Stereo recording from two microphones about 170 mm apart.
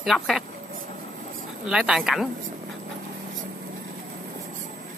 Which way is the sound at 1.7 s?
5° right (ahead or behind).